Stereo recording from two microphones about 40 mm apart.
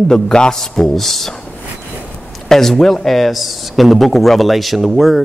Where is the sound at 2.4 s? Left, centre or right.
Centre.